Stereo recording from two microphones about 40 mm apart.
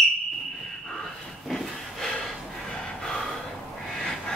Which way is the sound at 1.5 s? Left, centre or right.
Centre.